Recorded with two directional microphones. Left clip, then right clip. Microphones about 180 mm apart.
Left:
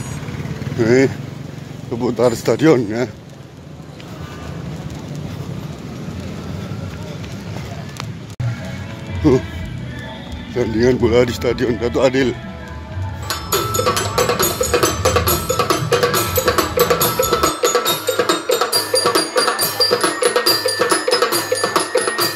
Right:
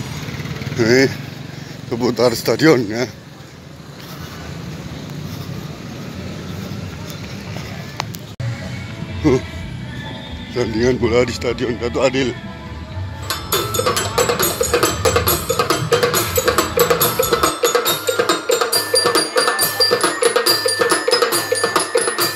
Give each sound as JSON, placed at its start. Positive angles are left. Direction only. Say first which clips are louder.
{"t": 0.7, "sound": "speech", "louder": "even", "side_deg": 10}
{"t": 1.9, "sound": "speech", "louder": "right 1 dB", "side_deg": -5}
{"t": 2.2, "sound": "speech", "louder": "even", "side_deg": 10}
{"t": 9.2, "sound": "speech", "louder": "left 1 dB", "side_deg": 5}
{"t": 10.5, "sound": "speech", "louder": "left 2 dB", "side_deg": 5}
{"t": 13.3, "sound": "music", "louder": "left 1 dB", "side_deg": -15}